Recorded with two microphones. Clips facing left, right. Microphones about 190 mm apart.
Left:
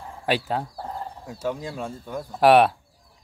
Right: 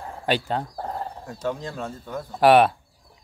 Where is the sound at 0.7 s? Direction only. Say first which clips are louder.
Right 3 dB; 70° right (ahead or behind).